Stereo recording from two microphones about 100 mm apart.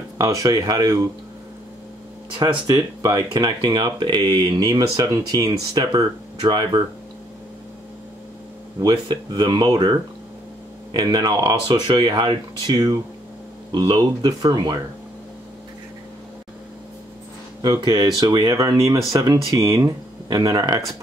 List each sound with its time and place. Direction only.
0.2 s speech: 35° right (ahead or behind)
2.6 s speech: 40° right (ahead or behind)
8.8 s speech: 45° right (ahead or behind)
17.6 s speech: 40° right (ahead or behind)